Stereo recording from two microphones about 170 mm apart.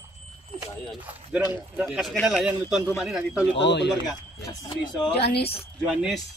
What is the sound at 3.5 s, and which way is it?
Speech, 90° left.